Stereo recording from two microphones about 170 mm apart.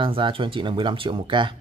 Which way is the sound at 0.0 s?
30° right (ahead or behind).